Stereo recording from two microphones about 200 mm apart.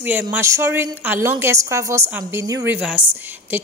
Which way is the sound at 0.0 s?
10° right (ahead or behind).